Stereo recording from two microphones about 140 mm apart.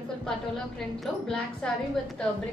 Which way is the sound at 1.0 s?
5° left (ahead or behind).